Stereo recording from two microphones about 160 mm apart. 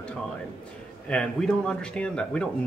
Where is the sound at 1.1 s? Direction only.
5° left (ahead or behind).